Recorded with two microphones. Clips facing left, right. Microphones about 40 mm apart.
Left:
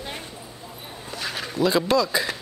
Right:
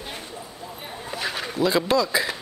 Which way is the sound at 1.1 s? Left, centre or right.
Centre.